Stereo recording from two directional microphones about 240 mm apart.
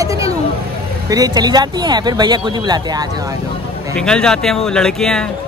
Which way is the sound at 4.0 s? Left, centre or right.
Centre.